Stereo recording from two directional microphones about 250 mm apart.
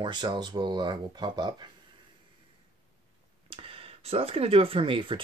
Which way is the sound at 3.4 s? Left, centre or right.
Right.